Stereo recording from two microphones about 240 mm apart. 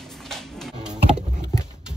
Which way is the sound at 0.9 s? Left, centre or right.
Right.